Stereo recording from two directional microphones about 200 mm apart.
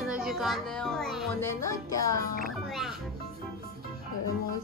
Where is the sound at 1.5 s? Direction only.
15° left (ahead or behind).